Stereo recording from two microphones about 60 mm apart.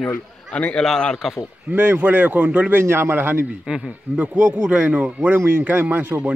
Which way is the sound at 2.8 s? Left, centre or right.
Right.